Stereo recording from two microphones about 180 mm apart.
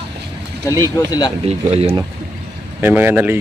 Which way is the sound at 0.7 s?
20° left (ahead or behind).